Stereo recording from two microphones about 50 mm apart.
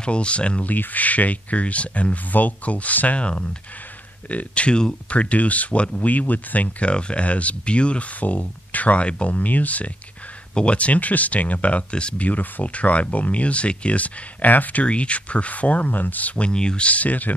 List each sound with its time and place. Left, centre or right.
0.0 s speech: left
0.7 s speech: left
12.3 s speech: left